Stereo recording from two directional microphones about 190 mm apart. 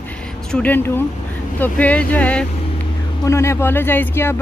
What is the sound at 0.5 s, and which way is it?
Speech, 10° left (ahead or behind).